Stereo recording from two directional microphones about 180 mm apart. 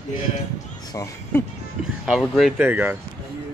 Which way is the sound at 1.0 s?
15° left (ahead or behind).